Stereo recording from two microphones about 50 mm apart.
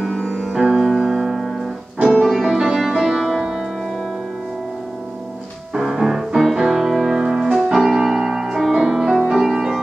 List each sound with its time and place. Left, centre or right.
0.0 s music: centre
0.6 s music: centre
2.0 s music: centre
2.2 s music: centre
5.8 s music: centre